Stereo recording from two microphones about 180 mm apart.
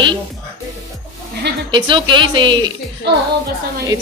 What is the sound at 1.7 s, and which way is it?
Speech, 25° right (ahead or behind).